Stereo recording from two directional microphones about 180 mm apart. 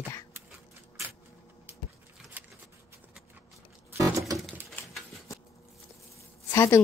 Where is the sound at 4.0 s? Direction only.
15° right (ahead or behind).